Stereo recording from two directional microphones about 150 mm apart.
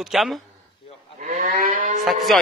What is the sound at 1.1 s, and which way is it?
Livestock, 50° right (ahead or behind).